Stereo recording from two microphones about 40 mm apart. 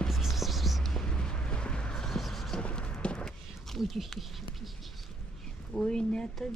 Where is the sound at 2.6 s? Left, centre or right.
Left.